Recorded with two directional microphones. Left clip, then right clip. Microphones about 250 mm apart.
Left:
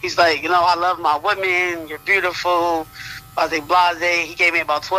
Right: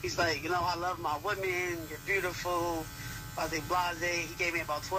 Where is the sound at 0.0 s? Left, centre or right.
Left.